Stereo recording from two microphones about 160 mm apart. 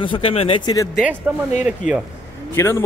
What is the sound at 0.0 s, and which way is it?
Speech, 35° left (ahead or behind).